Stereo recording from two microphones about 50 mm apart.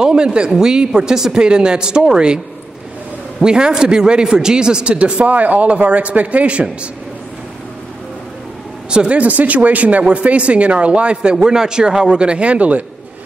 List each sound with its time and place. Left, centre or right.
0.0 s speech: centre
3.4 s speech: centre
8.9 s speech: right